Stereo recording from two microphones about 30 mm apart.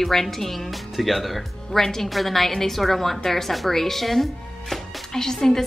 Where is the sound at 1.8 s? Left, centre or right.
Centre.